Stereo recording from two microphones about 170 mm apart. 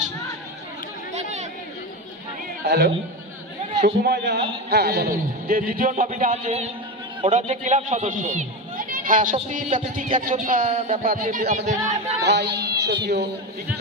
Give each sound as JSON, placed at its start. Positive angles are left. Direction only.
{"t": 1.1, "sound": "chatter", "side_deg": -45}
{"t": 2.6, "sound": "a man's voice", "side_deg": -85}
{"t": 4.0, "sound": "a man's voice", "side_deg": -75}
{"t": 4.6, "sound": "a man's voice", "side_deg": -70}
{"t": 11.4, "sound": "speech", "side_deg": -40}
{"t": 12.2, "sound": "speech", "side_deg": -80}